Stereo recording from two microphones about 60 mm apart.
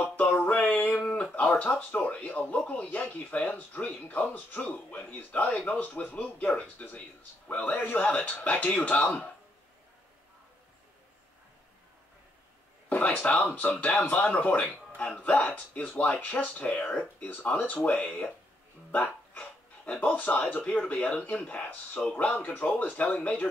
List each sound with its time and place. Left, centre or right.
0.0 s a sound: left
0.4 s music: left
1.0 s a sound: left
1.8 s speech: left
12.9 s speech: left
18.9 s speech: left
22.6 s speech: left